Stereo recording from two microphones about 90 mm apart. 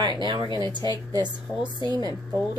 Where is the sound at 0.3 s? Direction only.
60° right (ahead or behind).